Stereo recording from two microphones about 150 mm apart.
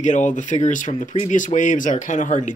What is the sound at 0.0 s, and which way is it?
Speech, 55° left (ahead or behind).